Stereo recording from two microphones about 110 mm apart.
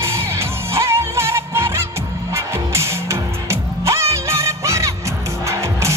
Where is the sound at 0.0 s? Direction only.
25° right (ahead or behind).